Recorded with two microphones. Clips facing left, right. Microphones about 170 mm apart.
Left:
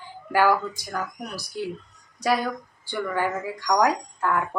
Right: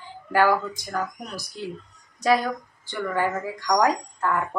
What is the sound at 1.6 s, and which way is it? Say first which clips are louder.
A woman's voice: left 5 dB; 10° left (ahead or behind).